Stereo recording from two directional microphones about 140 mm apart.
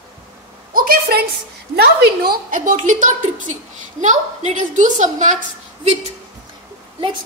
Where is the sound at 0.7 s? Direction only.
90° right.